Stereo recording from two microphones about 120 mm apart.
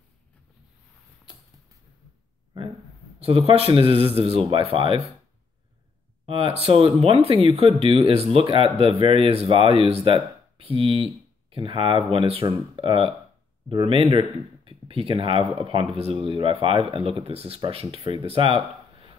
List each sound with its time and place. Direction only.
3.2 s speech: 55° right (ahead or behind)
6.2 s speech: 50° right (ahead or behind)